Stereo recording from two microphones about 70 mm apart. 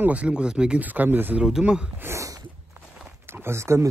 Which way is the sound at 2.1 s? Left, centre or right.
Right.